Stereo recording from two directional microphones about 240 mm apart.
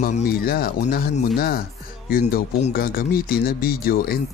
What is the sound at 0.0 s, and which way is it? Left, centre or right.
Speech, left.